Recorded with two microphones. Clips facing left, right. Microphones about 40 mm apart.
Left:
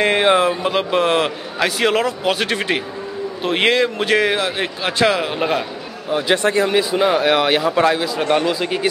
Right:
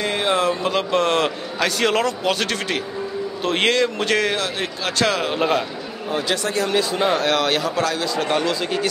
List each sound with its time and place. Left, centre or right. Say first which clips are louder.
0.0 s speech: left 7 dB; left
0.3 s a man's voice: left 4 dB; centre
6.0 s a man's voice: left 6 dB; centre